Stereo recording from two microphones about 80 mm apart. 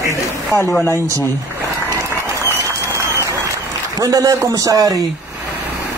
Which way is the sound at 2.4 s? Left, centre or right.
Right.